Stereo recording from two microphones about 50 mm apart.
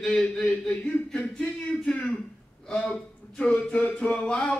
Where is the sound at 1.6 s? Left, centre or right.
Left.